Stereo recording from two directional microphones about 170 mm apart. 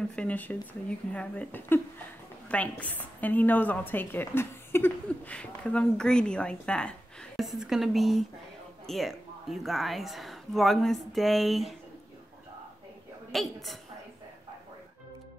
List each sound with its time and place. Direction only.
0.1 s a woman's voice: 10° left (ahead or behind)
13.3 s a woman's voice: centre (ahead or behind)